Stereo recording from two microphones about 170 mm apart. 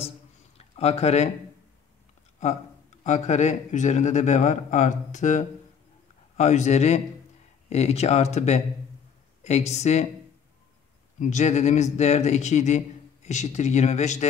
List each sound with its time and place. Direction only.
0.6 s speech: 40° left (ahead or behind)
3.0 s a man's voice: 45° left (ahead or behind)
11.1 s a man's voice: 45° left (ahead or behind)